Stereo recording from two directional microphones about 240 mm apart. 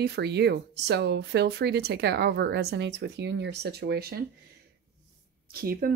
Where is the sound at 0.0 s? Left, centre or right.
Right.